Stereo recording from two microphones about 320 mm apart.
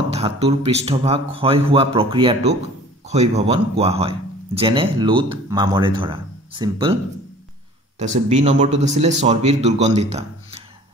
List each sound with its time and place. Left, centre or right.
0.1 s a man's voice: centre
8.3 s a man's voice: right